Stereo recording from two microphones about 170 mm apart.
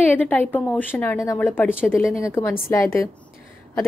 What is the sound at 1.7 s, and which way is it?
Speech, 5° right (ahead or behind).